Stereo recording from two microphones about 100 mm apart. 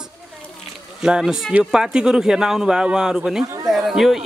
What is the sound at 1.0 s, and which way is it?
A man's voice, 5° right (ahead or behind).